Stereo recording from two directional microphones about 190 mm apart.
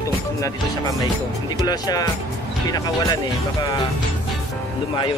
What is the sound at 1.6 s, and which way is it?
Speech, 20° left (ahead or behind).